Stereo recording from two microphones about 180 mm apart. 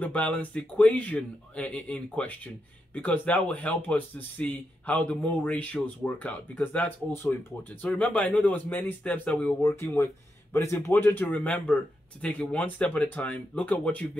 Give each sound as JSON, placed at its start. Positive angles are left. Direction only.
{"t": 0.0, "sound": "a man's voice", "side_deg": 10}